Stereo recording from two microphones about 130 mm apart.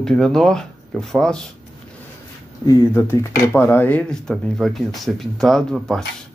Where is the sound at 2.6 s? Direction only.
20° left (ahead or behind); by 6.0 s centre (ahead or behind).